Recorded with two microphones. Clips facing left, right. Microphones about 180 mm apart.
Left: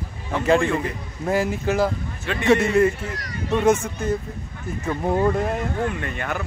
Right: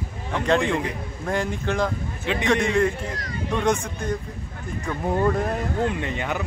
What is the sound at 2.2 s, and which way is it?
Speech, 15° right (ahead or behind).